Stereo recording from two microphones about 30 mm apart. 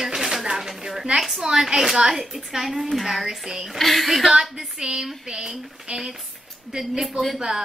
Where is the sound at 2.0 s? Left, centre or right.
Centre.